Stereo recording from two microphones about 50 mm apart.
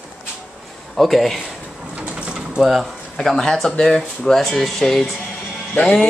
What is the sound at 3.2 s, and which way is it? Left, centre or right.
Speech, centre.